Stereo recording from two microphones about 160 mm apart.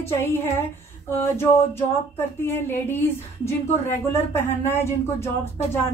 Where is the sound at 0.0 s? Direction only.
15° left (ahead or behind).